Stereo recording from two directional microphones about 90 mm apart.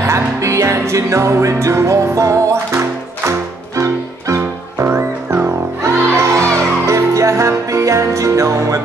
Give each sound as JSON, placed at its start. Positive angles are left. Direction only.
{"t": 0.0, "sound": "music", "side_deg": -35}